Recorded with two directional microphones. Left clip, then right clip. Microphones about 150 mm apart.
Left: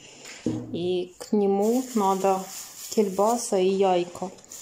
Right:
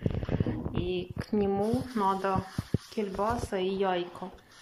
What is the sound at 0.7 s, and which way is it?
Speech, 25° left (ahead or behind).